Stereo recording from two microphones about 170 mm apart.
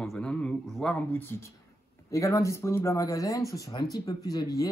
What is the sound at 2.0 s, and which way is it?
Speech, 20° left (ahead or behind).